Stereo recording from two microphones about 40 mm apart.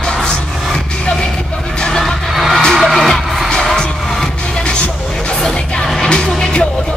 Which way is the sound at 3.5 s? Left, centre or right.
Centre.